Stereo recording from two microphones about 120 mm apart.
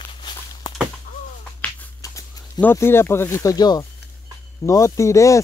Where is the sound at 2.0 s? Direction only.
30° left (ahead or behind).